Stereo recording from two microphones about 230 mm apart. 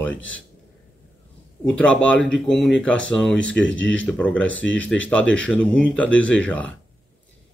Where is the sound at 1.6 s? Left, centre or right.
Centre.